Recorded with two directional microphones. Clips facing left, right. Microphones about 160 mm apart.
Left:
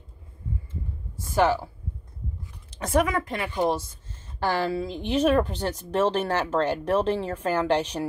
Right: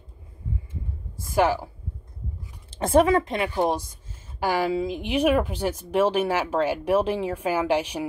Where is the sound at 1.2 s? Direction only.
10° right (ahead or behind).